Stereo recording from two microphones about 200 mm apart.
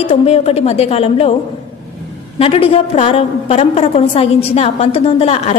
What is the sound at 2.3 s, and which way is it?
A woman's voice, 30° left (ahead or behind).